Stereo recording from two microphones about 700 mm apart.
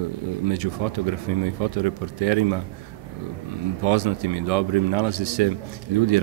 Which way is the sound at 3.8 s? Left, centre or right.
Right.